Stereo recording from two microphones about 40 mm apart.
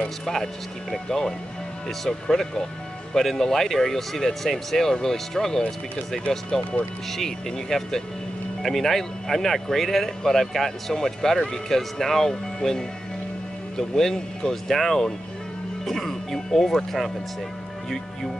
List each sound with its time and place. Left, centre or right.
0.2 s speech: centre
6.3 s speech: left
7.1 s speech: centre